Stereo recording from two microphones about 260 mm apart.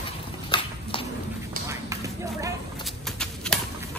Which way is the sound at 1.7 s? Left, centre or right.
Centre.